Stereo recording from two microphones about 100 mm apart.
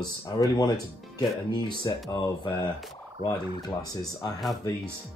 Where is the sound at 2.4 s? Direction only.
50° left (ahead or behind).